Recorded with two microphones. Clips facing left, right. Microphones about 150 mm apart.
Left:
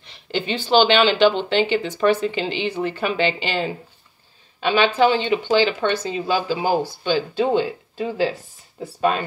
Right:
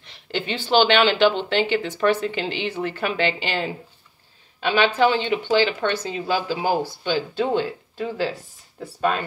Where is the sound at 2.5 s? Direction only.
15° left (ahead or behind).